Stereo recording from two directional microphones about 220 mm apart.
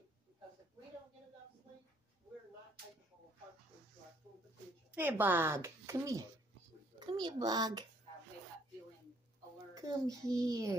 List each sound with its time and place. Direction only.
4.9 s speech: 10° right (ahead or behind)
9.8 s speech: 15° right (ahead or behind)